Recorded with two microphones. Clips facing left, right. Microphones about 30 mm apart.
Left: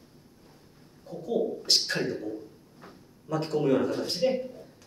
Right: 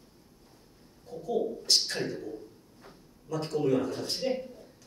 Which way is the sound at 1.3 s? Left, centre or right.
Centre.